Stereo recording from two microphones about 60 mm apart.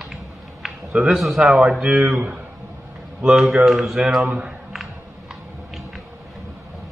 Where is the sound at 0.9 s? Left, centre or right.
Centre.